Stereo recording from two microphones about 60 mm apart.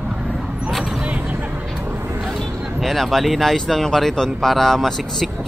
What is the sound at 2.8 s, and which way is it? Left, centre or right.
Speech, centre.